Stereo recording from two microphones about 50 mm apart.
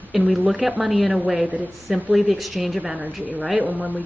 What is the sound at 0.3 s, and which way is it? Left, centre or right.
A woman's voice, centre.